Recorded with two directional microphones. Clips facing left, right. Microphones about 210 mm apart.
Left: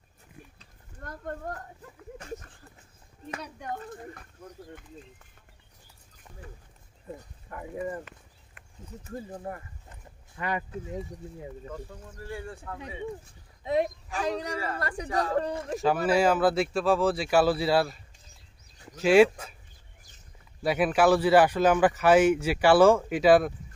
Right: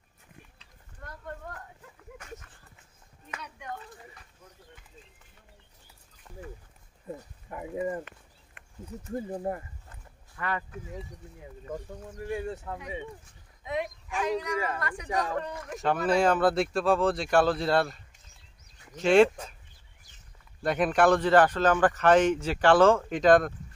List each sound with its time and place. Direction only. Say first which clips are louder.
0.6 s a sound: left 3 dB; 45° left (ahead or behind)
3.3 s speech: left 3 dB; 45° left (ahead or behind)
7.2 s speech: right 2 dB; 15° right (ahead or behind)
9.1 s speech: right 5 dB; 20° right (ahead or behind)
9.8 s a sound: left 2 dB; 20° left (ahead or behind)
11.7 s speech: right 3 dB; 20° right (ahead or behind)
13.7 s speech: left 6 dB; 35° left (ahead or behind)
15.0 s speech: left 1 dB; 15° right (ahead or behind)
15.4 s speech: left 6 dB; 30° left (ahead or behind)
15.8 s speech: left 1 dB; 5° left (ahead or behind)
18.9 s speech: left 1 dB; 5° left (ahead or behind)
20.6 s a man's voice: left 1 dB; 5° left (ahead or behind)